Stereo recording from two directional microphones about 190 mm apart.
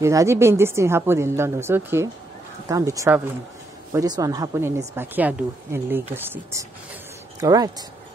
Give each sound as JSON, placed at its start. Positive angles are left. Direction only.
{"t": 0.0, "sound": "a woman's voice", "side_deg": -15}